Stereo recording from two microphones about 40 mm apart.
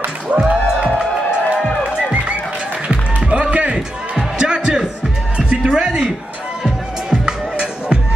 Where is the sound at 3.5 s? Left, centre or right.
Right.